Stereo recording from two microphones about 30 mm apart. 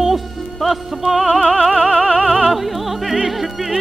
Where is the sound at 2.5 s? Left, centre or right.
Centre.